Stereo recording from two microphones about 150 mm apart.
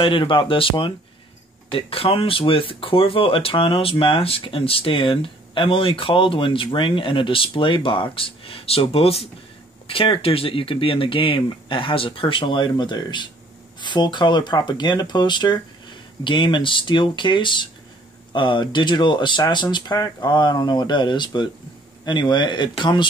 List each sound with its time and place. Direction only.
0.0 s speech: 35° left (ahead or behind)